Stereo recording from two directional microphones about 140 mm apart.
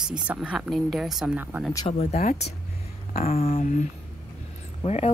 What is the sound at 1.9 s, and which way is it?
Speech, 50° left (ahead or behind).